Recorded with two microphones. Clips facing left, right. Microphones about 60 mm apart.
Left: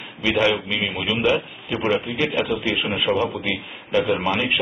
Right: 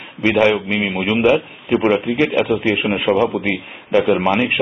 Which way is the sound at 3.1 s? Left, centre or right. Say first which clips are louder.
Right 7 dB; right.